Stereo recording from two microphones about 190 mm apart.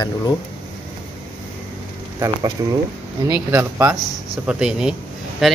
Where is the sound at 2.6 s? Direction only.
20° right (ahead or behind); by 5.6 s centre (ahead or behind).